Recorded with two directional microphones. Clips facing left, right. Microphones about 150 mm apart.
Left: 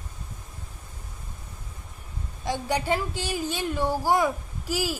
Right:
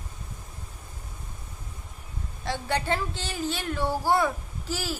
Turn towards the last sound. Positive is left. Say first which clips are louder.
# left 4 dB
turn(degrees=15)  # may be behind; listen again after turning